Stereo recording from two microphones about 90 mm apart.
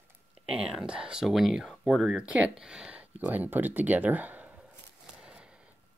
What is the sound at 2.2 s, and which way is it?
Speech, 15° right (ahead or behind).